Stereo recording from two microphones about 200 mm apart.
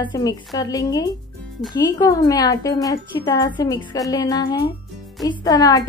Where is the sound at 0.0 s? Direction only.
20° left (ahead or behind).